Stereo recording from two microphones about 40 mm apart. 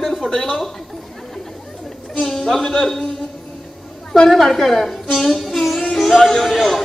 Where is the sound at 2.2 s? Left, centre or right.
Centre.